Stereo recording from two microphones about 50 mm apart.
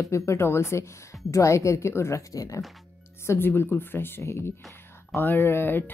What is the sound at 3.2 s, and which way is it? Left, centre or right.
Speech, left.